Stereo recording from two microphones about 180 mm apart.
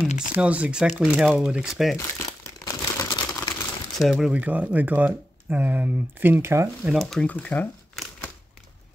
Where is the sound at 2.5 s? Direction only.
20° left (ahead or behind).